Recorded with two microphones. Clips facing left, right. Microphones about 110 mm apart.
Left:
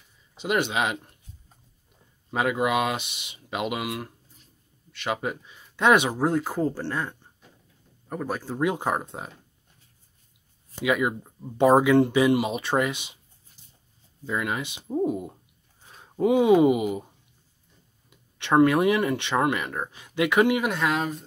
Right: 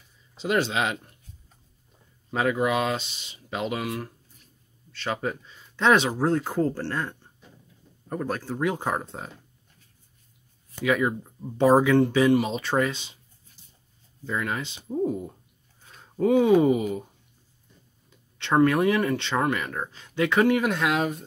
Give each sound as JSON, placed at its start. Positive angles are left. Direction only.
{"t": 0.3, "sound": "speech", "side_deg": 10}
{"t": 2.3, "sound": "speech", "side_deg": 10}
{"t": 10.9, "sound": "speech", "side_deg": 15}
{"t": 14.2, "sound": "speech", "side_deg": 15}
{"t": 18.6, "sound": "speech", "side_deg": 20}